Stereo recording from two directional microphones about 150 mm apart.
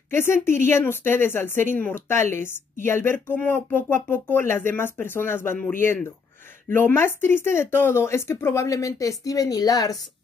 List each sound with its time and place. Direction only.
0.1 s speech: 15° left (ahead or behind)